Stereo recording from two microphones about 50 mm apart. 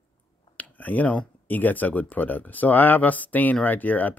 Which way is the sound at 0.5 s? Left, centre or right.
Left.